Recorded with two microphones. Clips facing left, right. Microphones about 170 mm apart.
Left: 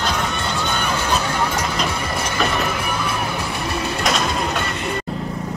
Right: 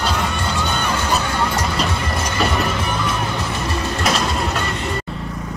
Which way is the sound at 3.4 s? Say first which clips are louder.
Right 1 dB; 15° left (ahead or behind).